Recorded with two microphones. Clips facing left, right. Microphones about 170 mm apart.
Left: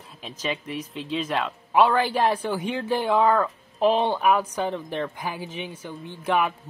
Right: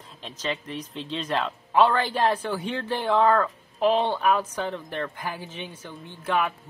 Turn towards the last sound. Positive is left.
turn(degrees=15)  # may be behind; listen again after turning